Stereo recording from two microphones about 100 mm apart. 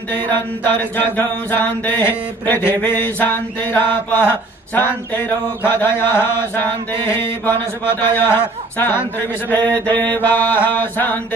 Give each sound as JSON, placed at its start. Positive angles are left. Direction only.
{"t": 0.7, "sound": "mantra", "side_deg": 20}